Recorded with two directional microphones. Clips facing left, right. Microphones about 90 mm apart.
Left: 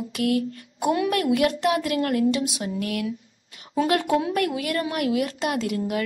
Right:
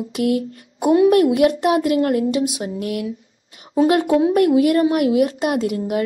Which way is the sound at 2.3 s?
50° right (ahead or behind).